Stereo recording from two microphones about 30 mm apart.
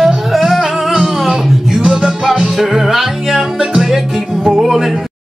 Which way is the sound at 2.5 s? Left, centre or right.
Centre.